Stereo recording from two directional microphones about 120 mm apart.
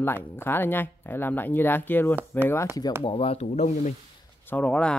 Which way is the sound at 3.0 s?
50° left (ahead or behind).